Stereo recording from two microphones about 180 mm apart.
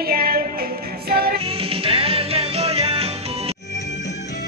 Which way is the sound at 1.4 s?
30° right (ahead or behind).